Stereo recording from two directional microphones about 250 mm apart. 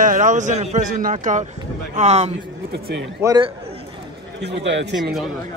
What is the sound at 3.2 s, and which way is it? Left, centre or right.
Speech, centre.